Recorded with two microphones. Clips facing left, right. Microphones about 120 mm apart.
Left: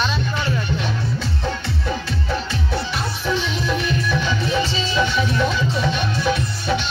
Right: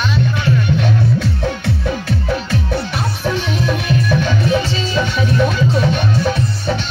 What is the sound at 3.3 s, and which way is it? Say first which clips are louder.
Music: right 3 dB; 50° right (ahead or behind).